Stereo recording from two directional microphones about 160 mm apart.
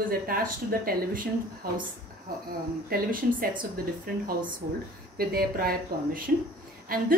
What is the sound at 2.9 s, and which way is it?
Speech, 60° right (ahead or behind).